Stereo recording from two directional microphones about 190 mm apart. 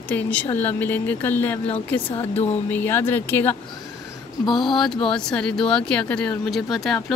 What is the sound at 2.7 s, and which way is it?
Speech, 10° left (ahead or behind).